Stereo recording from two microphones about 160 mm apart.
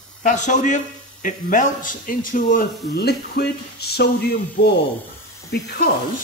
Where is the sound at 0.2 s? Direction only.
50° left (ahead or behind); by 5.7 s 90° left.